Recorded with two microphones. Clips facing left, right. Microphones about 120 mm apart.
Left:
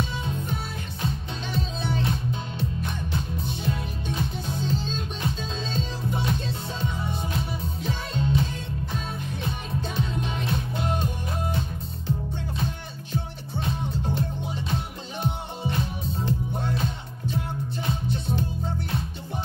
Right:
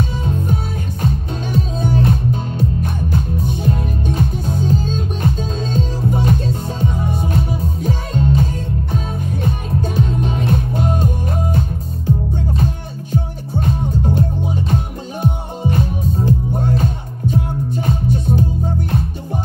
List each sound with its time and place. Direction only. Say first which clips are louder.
0.2 s music: right 9 dB; 50° right (ahead or behind)
13.1 s music: right 10 dB; 50° right (ahead or behind)